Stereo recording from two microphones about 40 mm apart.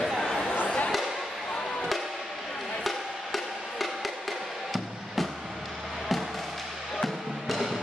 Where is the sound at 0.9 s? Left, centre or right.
Centre.